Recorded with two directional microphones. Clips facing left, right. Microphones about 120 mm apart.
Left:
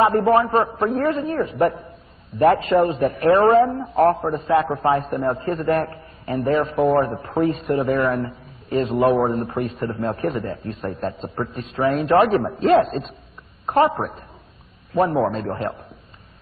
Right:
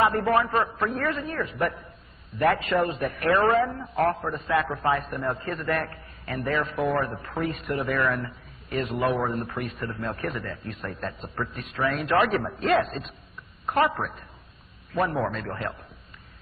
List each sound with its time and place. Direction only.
0.0 s a man's voice: 30° left (ahead or behind)